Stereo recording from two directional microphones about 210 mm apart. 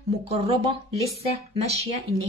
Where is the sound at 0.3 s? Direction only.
30° right (ahead or behind).